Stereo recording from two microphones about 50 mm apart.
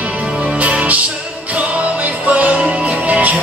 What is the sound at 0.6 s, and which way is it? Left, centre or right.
Music, right.